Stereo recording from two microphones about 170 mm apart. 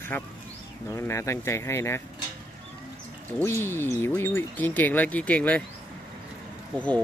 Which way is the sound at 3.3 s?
15° left (ahead or behind).